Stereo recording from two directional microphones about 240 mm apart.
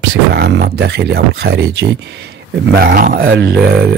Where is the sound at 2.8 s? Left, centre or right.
Right.